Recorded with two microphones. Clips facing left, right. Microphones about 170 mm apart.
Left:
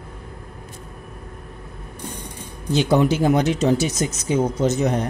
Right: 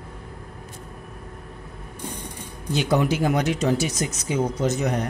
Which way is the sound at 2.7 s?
25° left (ahead or behind).